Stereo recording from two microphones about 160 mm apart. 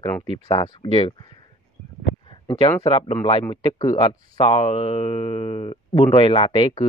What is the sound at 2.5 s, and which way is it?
Speech, 35° left (ahead or behind).